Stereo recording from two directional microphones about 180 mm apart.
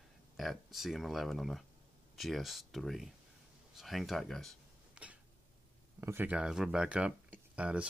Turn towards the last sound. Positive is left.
turn(degrees=-5)  # may be behind; listen again after turning